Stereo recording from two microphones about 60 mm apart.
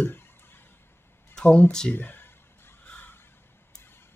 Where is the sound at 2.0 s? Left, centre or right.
Left.